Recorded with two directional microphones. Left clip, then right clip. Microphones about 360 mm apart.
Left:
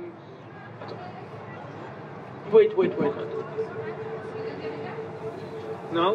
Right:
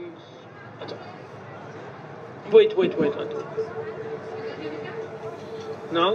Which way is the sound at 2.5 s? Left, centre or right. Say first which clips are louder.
Right 2 dB; right.